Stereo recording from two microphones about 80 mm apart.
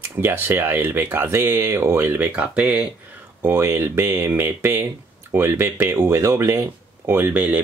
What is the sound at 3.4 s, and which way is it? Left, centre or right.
Speech, right.